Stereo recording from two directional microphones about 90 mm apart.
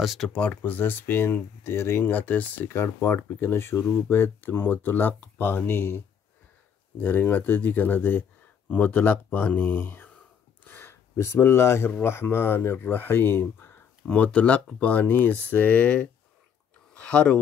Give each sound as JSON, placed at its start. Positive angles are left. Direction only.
{"t": 0.0, "sound": "speech", "side_deg": 0}
{"t": 0.3, "sound": "speech", "side_deg": 15}